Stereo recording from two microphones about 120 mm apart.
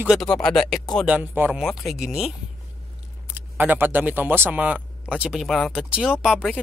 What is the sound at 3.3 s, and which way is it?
Speech, 15° right (ahead or behind).